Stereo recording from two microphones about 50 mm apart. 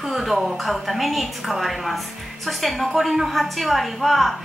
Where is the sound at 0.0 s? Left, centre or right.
Centre.